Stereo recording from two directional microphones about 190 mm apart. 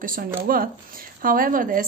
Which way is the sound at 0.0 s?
45° right (ahead or behind).